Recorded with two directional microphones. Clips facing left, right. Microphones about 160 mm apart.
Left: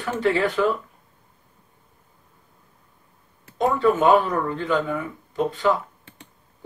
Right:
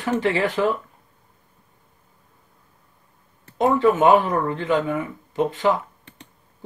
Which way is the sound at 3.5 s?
20° right (ahead or behind).